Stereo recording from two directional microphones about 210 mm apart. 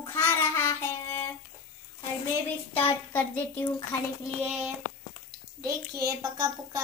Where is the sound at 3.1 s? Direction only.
10° left (ahead or behind).